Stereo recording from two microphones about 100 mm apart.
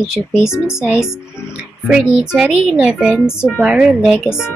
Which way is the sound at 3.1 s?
25° left (ahead or behind).